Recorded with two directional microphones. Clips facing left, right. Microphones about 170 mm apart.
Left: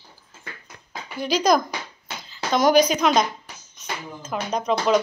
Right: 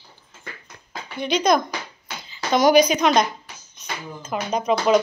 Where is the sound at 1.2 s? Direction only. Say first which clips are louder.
Even; centre (ahead or behind).